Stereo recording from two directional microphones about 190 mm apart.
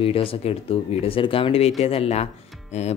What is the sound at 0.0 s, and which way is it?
Speech, 30° left (ahead or behind).